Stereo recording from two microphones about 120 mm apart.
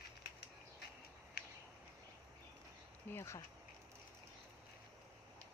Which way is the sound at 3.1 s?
20° left (ahead or behind).